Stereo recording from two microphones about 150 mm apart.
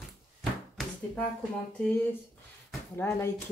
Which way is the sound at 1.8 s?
10° left (ahead or behind).